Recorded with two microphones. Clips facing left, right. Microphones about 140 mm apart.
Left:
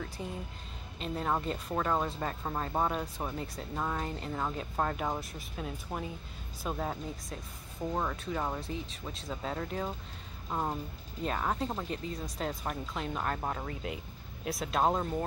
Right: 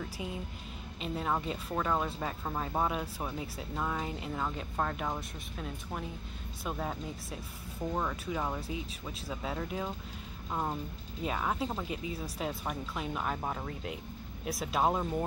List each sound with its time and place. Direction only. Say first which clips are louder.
0.2 s speech: right 1 dB; 10° right (ahead or behind)
10.5 s speech: left 1 dB; 5° left (ahead or behind)
11.2 s speech: left 1 dB; 5° right (ahead or behind)